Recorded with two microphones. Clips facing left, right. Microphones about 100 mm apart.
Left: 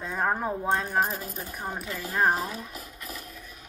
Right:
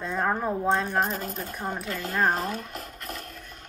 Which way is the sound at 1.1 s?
55° right (ahead or behind).